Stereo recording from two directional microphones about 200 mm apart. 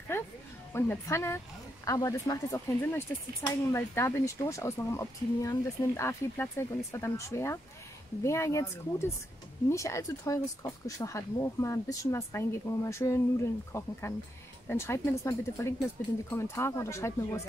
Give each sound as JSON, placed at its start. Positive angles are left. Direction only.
{"t": 0.7, "sound": "speech", "side_deg": 15}